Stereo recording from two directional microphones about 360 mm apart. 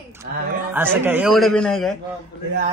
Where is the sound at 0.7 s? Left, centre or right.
Centre.